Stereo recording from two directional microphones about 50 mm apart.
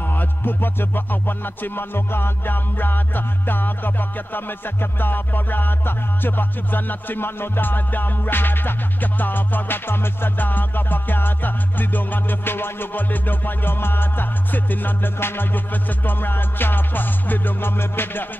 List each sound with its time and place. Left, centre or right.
0.0 s music: left